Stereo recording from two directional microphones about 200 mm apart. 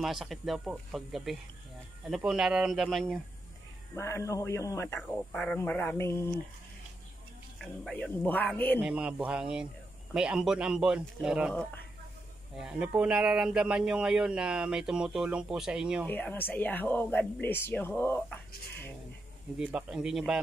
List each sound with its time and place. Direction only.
0.0 s speech: centre (ahead or behind)
3.9 s speech: 15° left (ahead or behind)
7.5 s speech: 5° left (ahead or behind)
8.7 s speech: 5° right (ahead or behind)
16.1 s speech: 10° left (ahead or behind)
19.6 s speech: 5° right (ahead or behind)